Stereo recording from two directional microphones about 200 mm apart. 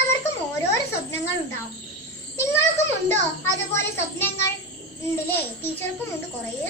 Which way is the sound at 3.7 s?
10° left (ahead or behind).